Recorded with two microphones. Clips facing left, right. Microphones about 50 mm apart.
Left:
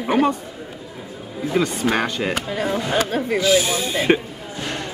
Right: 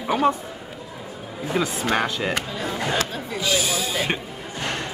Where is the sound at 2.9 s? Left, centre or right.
Left.